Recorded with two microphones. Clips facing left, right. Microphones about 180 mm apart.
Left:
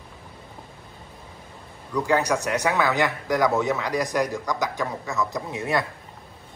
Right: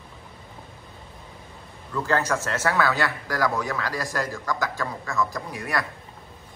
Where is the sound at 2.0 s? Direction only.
15° left (ahead or behind).